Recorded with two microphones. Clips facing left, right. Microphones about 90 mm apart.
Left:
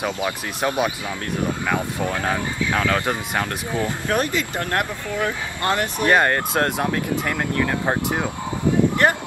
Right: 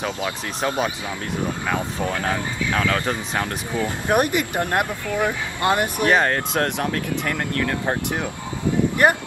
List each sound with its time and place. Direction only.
0.0 s speech: 10° left (ahead or behind)
2.3 s speech: 10° left (ahead or behind)
4.1 s speech: 15° right (ahead or behind)
6.0 s speech: centre (ahead or behind)